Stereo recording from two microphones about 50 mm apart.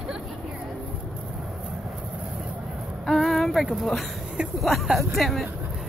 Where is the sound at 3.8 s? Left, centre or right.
Centre.